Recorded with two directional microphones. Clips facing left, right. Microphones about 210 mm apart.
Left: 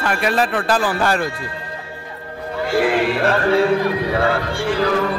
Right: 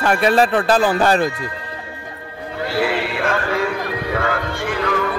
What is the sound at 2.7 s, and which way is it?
Speech, 45° left (ahead or behind).